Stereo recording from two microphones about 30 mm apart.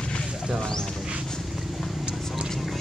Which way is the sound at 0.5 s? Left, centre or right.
Centre.